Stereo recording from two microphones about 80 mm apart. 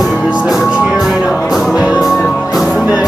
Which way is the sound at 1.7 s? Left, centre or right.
Centre.